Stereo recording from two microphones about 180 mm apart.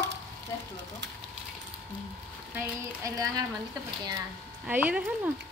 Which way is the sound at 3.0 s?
20° right (ahead or behind).